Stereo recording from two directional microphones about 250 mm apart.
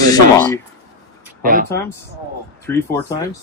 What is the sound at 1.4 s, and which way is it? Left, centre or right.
Speech, right.